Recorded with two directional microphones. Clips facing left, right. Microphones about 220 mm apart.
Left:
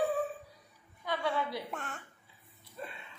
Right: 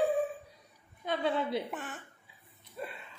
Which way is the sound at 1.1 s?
20° right (ahead or behind).